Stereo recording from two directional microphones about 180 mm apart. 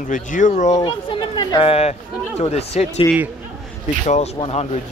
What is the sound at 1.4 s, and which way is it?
Speech, 25° left (ahead or behind).